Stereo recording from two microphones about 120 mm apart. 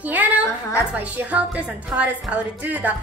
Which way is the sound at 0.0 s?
15° right (ahead or behind).